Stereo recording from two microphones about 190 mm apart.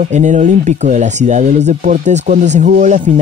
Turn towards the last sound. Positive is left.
turn(degrees=-40)  # may be behind; listen again after turning